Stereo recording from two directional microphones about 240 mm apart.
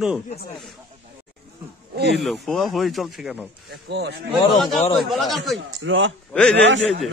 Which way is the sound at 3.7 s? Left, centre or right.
Right.